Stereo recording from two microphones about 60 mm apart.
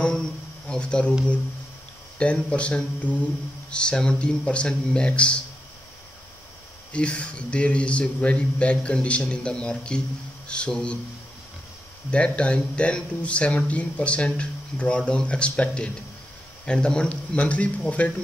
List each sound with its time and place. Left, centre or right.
0.7 s speech: centre
2.1 s speech: centre
6.9 s speech: centre
12.1 s speech: centre